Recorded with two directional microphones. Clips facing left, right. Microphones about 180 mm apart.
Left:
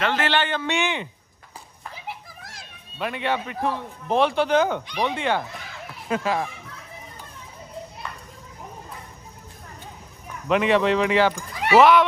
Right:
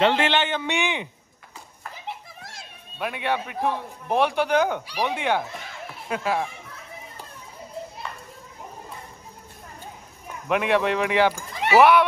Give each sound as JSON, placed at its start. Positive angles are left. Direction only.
{"t": 0.0, "sound": "speech", "side_deg": -15}
{"t": 2.4, "sound": "speech", "side_deg": 0}
{"t": 6.0, "sound": "speech", "side_deg": 0}
{"t": 10.5, "sound": "speech", "side_deg": -5}